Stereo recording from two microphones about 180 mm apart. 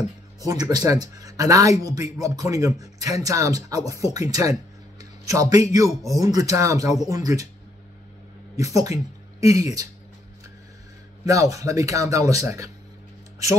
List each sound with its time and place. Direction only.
0.4 s speech: 20° right (ahead or behind)
8.8 s speech: 20° right (ahead or behind)
11.2 s a man's voice: 15° right (ahead or behind)